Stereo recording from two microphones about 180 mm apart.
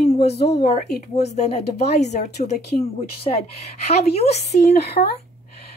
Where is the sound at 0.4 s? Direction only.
65° left (ahead or behind).